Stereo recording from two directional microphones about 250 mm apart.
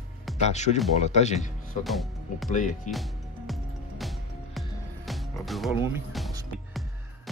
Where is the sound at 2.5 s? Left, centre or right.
Left.